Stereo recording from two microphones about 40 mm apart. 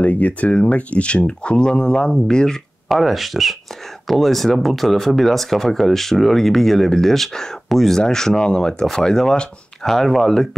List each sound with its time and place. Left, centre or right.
0.0 s speech: left; by 2.6 s centre
2.9 s speech: centre
9.8 s speech: centre